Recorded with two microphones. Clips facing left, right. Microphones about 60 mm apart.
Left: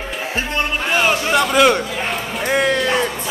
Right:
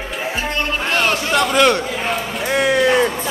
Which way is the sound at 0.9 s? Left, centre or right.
Centre.